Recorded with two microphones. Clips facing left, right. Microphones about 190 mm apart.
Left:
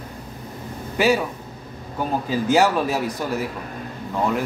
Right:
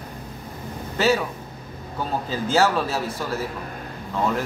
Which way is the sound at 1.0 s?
15° left (ahead or behind).